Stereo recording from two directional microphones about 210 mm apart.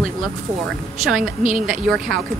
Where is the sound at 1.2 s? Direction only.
40° right (ahead or behind).